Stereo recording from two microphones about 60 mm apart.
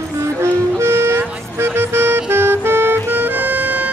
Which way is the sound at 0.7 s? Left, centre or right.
Right.